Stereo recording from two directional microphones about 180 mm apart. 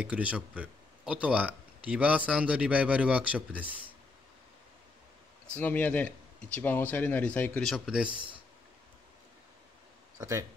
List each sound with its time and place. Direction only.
0.0 s speech: 5° right (ahead or behind)
5.6 s speech: 10° left (ahead or behind)
7.7 s speech: 5° right (ahead or behind)
10.1 s speech: 20° right (ahead or behind)